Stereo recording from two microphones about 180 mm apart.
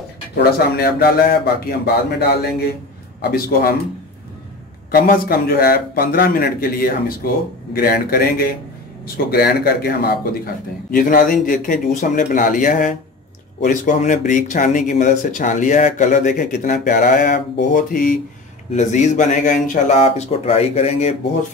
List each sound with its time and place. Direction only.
0.4 s a man's voice: 60° left (ahead or behind)
4.9 s a man's voice: 55° left (ahead or behind); by 21.1 s 35° left (ahead or behind)